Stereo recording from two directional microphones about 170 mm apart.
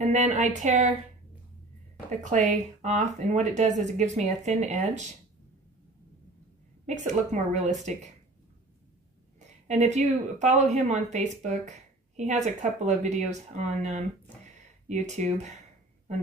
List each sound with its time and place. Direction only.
0.0 s speech: 45° right (ahead or behind)
2.0 s speech: 45° right (ahead or behind)
7.1 s speech: 45° right (ahead or behind)
9.7 s speech: 45° right (ahead or behind)